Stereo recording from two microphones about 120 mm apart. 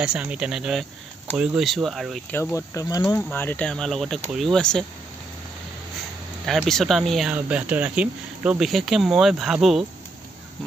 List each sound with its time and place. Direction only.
0.0 s speech: 10° right (ahead or behind)
2.5 s speech: 30° left (ahead or behind)
3.3 s speech: 15° left (ahead or behind)
6.4 s speech: centre (ahead or behind)
7.2 s speech: 10° right (ahead or behind)